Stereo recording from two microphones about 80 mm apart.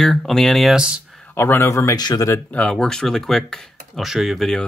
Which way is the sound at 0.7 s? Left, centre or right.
Centre.